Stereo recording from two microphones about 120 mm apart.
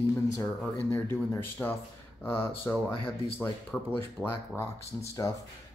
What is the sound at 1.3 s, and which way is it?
Speech, 15° left (ahead or behind).